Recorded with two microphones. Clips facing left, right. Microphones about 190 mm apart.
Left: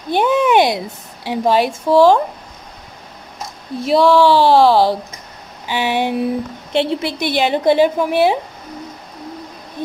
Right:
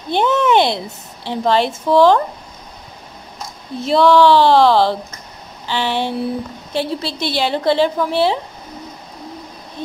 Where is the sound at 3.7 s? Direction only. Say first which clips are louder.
Even; 10° left (ahead or behind).